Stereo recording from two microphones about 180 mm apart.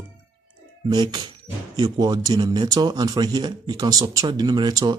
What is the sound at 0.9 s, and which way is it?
Speech, 25° right (ahead or behind).